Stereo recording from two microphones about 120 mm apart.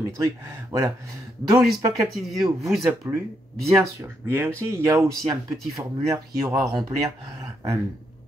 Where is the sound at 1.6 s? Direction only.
Centre (ahead or behind).